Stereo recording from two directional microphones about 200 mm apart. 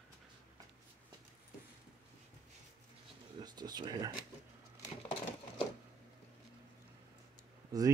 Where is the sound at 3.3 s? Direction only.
20° right (ahead or behind).